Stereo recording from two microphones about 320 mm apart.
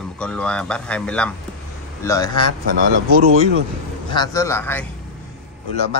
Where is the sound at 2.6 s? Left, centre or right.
Right.